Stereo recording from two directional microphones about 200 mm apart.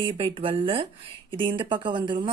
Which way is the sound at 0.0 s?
25° right (ahead or behind).